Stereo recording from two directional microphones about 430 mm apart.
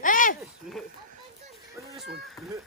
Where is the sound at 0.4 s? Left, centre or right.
Centre.